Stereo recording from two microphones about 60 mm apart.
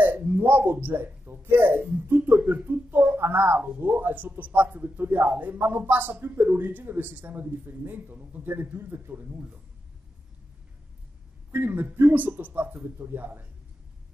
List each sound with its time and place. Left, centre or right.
0.0 s speech: right
11.5 s speech: right